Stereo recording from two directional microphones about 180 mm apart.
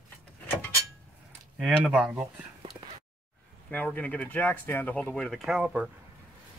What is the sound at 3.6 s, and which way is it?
Speech, 10° left (ahead or behind).